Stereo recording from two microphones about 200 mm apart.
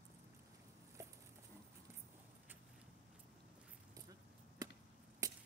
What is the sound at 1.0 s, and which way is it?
Clip-clop, 15° right (ahead or behind).